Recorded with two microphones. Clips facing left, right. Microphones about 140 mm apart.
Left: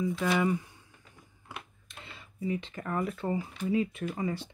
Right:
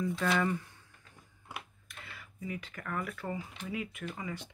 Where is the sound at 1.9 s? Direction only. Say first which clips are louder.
Left 1 dB; 25° left (ahead or behind).